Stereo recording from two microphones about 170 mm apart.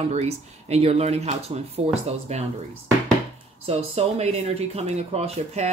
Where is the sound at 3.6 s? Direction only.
40° right (ahead or behind).